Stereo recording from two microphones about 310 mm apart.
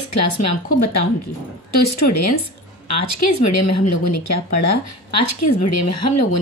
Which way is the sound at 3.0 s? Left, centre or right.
Left.